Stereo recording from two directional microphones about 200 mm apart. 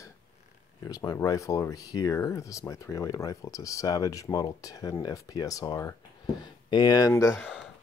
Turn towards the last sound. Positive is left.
turn(degrees=5)  # may be behind; listen again after turning